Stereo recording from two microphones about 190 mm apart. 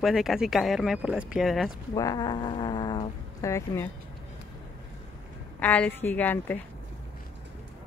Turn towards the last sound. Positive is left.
turn(degrees=10)  # may be behind; listen again after turning